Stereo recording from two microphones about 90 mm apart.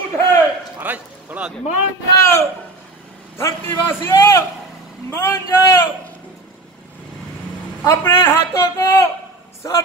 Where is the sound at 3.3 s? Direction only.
25° left (ahead or behind).